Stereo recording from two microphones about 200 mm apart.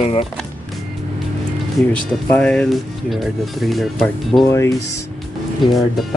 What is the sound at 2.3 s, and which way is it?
Speech, 5° left (ahead or behind).